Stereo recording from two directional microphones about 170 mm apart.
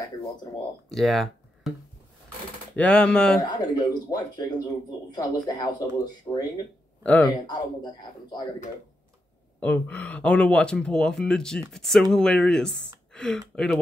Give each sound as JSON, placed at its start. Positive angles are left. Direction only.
{"t": 0.8, "sound": "speech", "side_deg": 0}
{"t": 2.7, "sound": "speech", "side_deg": 10}
{"t": 3.3, "sound": "speech", "side_deg": 25}
{"t": 7.0, "sound": "speech", "side_deg": 10}
{"t": 7.2, "sound": "speech", "side_deg": 25}
{"t": 9.6, "sound": "speech", "side_deg": 10}